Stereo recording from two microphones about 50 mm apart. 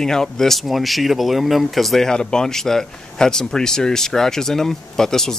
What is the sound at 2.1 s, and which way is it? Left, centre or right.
Speech, centre.